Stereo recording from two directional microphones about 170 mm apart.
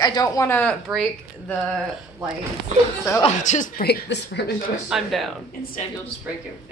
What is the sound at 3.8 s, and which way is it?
Speech, 75° left (ahead or behind).